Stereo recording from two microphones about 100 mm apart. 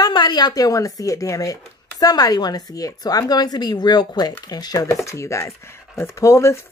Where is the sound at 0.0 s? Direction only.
45° left (ahead or behind).